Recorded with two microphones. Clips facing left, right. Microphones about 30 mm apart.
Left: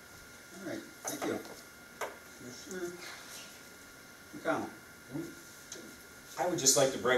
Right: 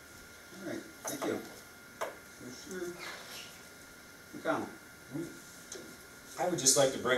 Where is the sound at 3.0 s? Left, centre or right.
Right.